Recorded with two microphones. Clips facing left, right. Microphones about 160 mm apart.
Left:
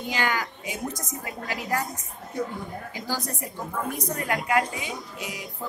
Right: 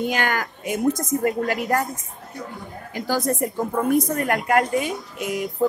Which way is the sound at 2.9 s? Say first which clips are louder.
Right 11 dB; 50° right (ahead or behind).